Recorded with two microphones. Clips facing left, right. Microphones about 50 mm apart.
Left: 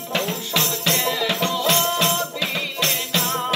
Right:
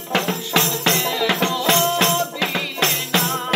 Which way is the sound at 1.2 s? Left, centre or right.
Right.